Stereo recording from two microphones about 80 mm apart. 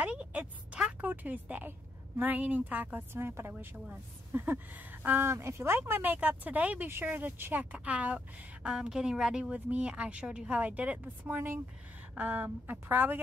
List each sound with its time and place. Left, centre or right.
0.0 s a woman's voice: centre